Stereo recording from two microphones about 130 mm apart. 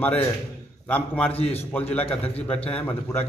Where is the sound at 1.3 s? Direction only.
50° left (ahead or behind).